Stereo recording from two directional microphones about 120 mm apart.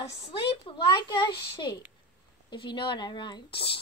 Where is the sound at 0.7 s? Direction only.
40° left (ahead or behind).